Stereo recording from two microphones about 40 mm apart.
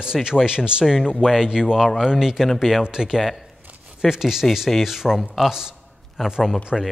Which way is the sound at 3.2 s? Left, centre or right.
Centre.